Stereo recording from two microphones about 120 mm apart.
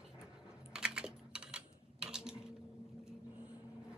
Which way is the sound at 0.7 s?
5° right (ahead or behind).